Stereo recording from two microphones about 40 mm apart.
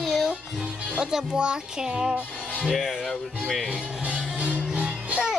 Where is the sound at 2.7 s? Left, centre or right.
Centre.